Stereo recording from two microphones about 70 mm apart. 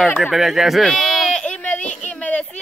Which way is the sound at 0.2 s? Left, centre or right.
Centre.